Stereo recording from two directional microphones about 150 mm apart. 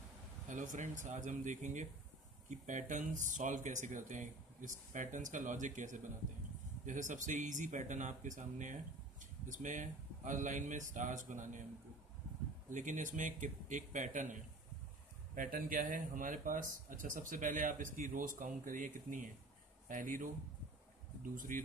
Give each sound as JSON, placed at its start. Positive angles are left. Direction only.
{"t": 0.5, "sound": "speech", "side_deg": -60}
{"t": 12.7, "sound": "speech", "side_deg": -60}
{"t": 21.4, "sound": "speech", "side_deg": -65}